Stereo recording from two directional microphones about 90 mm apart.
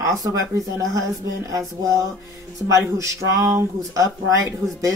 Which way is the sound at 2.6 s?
35° right (ahead or behind).